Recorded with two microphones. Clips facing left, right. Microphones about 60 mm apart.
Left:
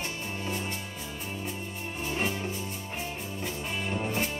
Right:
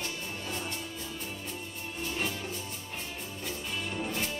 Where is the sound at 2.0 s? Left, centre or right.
Left.